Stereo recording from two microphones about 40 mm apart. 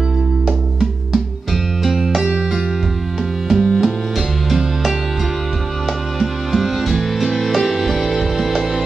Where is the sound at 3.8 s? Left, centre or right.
Centre.